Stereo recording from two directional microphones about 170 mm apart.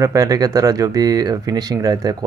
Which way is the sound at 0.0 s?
20° right (ahead or behind).